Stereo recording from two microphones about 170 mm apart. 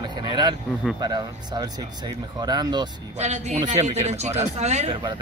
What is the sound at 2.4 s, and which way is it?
Speech, 25° right (ahead or behind).